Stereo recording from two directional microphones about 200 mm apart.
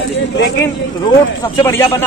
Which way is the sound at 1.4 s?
15° left (ahead or behind).